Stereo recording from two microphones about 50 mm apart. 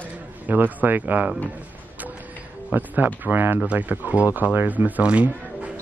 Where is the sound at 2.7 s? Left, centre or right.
Right.